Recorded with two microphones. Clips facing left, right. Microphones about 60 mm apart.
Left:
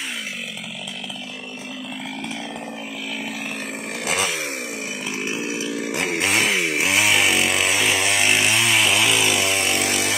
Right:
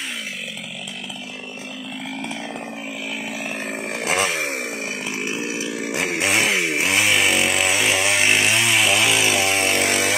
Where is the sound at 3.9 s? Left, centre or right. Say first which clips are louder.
Right 2 dB; right.